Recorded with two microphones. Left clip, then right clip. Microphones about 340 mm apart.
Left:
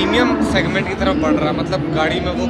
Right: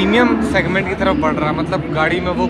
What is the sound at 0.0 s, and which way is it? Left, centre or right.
Speech, centre.